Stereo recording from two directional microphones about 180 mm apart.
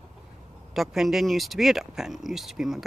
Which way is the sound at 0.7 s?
Centre (ahead or behind).